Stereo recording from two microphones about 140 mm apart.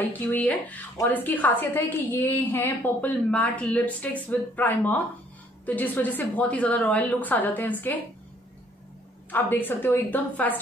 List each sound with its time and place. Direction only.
0.0 s a woman's voice: 10° left (ahead or behind)
9.3 s a woman's voice: 15° left (ahead or behind)